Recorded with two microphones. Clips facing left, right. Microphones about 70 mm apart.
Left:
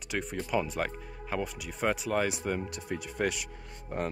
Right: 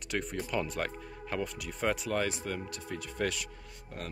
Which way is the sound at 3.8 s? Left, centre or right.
Left.